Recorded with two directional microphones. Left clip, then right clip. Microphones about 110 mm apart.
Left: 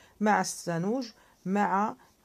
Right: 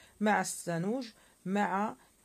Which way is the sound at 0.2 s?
35° left (ahead or behind).